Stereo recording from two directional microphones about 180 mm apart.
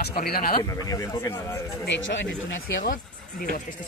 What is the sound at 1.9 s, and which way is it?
Speech, 90° left.